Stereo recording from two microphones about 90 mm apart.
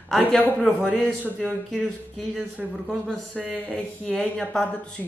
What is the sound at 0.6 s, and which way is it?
Speech, 15° left (ahead or behind).